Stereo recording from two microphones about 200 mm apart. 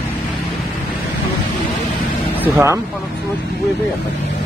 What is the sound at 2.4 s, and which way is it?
Speech, 10° right (ahead or behind).